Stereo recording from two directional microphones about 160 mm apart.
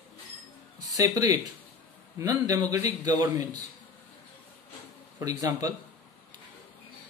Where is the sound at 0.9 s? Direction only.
20° right (ahead or behind).